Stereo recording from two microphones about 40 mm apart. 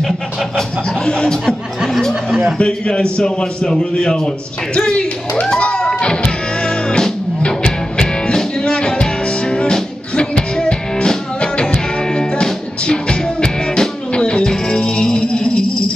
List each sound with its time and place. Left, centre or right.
1.0 s a man's voice: centre
2.6 s a man's voice: left
6.9 s music: centre